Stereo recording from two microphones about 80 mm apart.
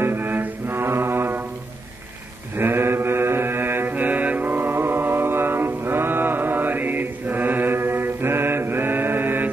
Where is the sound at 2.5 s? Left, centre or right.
Right.